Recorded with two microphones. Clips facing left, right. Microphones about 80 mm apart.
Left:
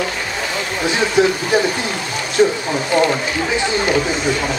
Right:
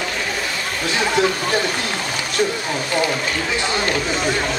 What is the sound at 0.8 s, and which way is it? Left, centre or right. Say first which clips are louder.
Speech: left 3 dB; centre.